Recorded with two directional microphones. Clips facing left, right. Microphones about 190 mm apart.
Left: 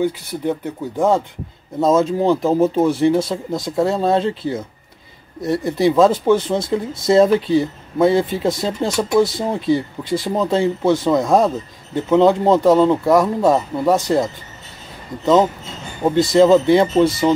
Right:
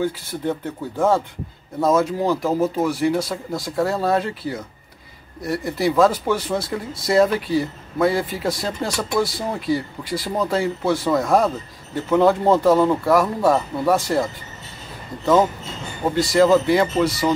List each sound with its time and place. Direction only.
0.0 s speech: 15° left (ahead or behind)
16.0 s speech: 20° left (ahead or behind)